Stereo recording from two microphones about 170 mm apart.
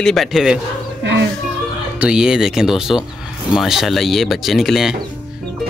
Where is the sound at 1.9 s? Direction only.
5° right (ahead or behind).